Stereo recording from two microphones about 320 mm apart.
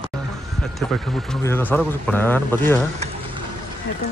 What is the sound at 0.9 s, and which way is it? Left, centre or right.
A man's voice, centre.